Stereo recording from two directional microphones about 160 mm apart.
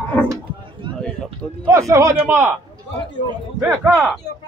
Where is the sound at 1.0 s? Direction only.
5° left (ahead or behind).